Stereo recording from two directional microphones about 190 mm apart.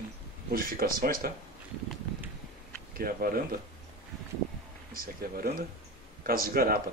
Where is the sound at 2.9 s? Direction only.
50° right (ahead or behind).